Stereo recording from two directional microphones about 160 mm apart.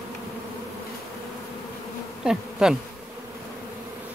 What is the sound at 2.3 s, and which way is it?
Bee, 5° right (ahead or behind).